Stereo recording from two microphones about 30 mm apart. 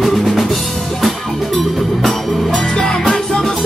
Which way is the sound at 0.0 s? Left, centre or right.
Centre.